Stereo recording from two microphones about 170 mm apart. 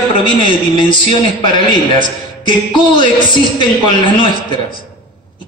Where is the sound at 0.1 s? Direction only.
30° left (ahead or behind).